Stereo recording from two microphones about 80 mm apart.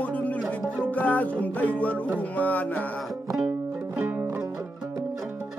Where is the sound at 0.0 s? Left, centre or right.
Centre.